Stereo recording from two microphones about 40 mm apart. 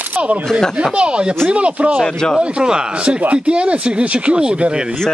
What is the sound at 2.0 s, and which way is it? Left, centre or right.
Speech, centre.